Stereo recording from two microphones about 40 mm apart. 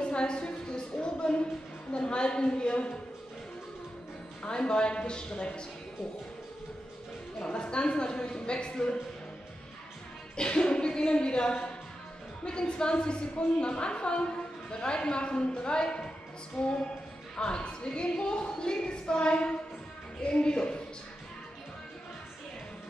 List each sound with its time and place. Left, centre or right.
0.0 s a sound: left
1.9 s speech: left
4.4 s speech: left
7.3 s speech: left
10.3 s speech: left